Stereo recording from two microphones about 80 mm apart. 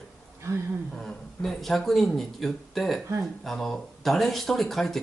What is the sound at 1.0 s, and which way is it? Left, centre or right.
Speech, centre.